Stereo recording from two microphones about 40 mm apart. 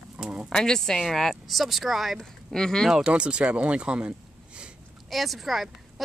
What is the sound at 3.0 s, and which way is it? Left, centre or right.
Speech, right.